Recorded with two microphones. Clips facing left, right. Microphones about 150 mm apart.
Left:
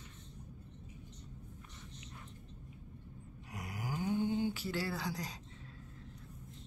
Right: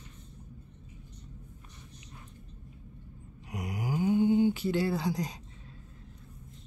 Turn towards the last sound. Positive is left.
turn(degrees=-20)  # may be behind; listen again after turning